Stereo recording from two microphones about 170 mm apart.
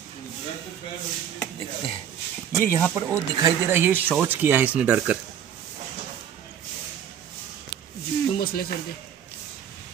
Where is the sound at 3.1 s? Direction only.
15° right (ahead or behind).